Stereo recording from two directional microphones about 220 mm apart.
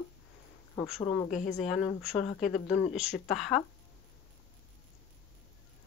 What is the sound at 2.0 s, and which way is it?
Speech, centre (ahead or behind).